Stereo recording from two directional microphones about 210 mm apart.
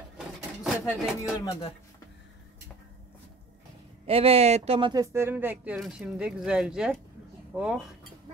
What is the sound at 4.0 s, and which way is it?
Speech, 30° right (ahead or behind).